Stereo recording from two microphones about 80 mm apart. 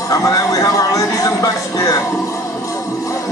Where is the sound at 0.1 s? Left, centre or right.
Left.